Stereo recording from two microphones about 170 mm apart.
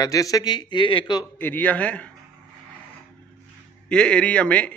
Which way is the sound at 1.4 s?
10° left (ahead or behind).